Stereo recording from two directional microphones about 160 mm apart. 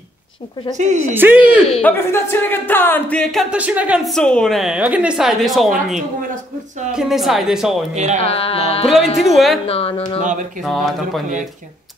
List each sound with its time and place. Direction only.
0.7 s speech: 45° right (ahead or behind)
1.1 s speech: 10° right (ahead or behind)
1.8 s speech: 15° left (ahead or behind)
3.5 s a woman's voice: 10° right (ahead or behind)
7.9 s speech: 45° right (ahead or behind)
8.2 s music: 35° left (ahead or behind)
9.2 s a woman's voice: centre (ahead or behind)
9.7 s music: 40° left (ahead or behind)
10.6 s a woman's voice: centre (ahead or behind)